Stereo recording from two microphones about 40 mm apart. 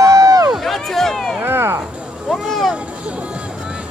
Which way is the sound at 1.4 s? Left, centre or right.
Right.